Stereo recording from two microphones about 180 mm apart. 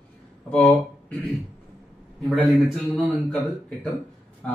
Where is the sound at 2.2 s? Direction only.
5° left (ahead or behind).